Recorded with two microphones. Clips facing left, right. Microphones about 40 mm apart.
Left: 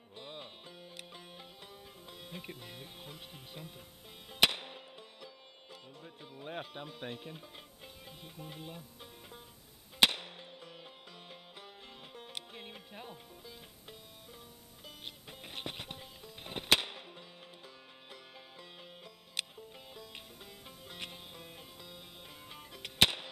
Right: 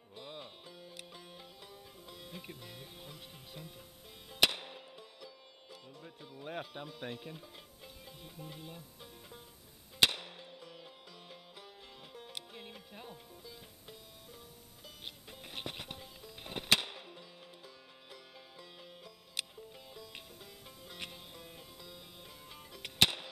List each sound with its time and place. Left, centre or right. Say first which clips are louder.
0.1 s music: even; centre
6.2 s speech: even; centre
9.9 s music: left 2 dB; centre
15.2 s music: left 1 dB; centre